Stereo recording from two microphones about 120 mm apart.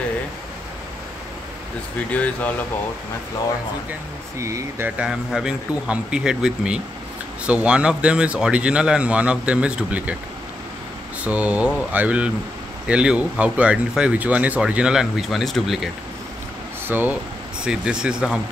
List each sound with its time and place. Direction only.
4.4 s speech: 25° right (ahead or behind)
4.8 s speech: 10° right (ahead or behind)
11.2 s speech: 10° right (ahead or behind)
16.8 s speech: 15° right (ahead or behind)